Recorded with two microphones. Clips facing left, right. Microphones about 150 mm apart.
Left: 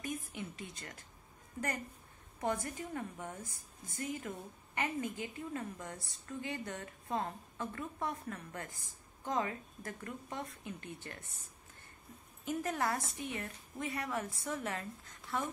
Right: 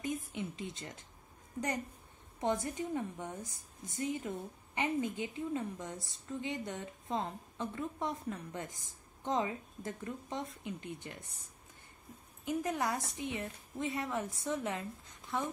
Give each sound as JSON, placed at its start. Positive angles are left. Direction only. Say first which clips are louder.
{"t": 0.3, "sound": "a sound", "louder": "right 4 dB", "side_deg": -20}
{"t": 2.4, "sound": "a woman's voice", "louder": "right 3 dB", "side_deg": -20}
{"t": 3.4, "sound": "speech", "louder": "right 2 dB", "side_deg": 0}
{"t": 4.0, "sound": "a woman's voice", "louder": "right 4 dB", "side_deg": -20}
{"t": 12.4, "sound": "a woman's voice", "louder": "right 1 dB", "side_deg": -15}